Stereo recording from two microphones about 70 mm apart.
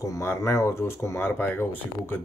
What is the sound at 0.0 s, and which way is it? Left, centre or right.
Speech, left.